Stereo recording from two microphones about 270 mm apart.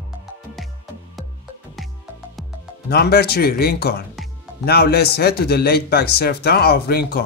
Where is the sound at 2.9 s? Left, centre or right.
Left.